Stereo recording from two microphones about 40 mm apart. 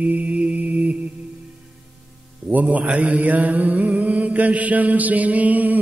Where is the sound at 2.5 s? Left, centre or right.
Right.